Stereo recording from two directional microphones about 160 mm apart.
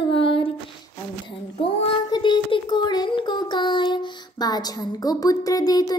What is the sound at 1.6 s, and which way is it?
Child singing, 30° left (ahead or behind).